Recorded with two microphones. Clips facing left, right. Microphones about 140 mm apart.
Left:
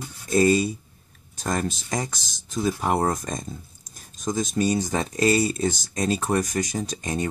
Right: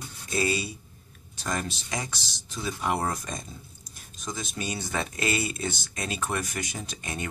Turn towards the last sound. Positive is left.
turn(degrees=35)  # may be behind; listen again after turning